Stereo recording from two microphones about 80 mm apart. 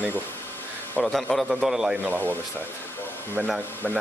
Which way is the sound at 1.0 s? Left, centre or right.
Centre.